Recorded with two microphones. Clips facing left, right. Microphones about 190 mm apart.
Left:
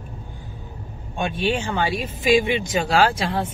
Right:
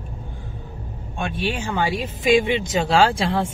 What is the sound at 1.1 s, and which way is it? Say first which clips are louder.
Speech: left 3 dB; centre (ahead or behind).